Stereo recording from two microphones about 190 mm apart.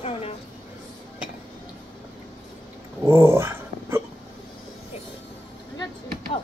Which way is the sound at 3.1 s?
15° right (ahead or behind).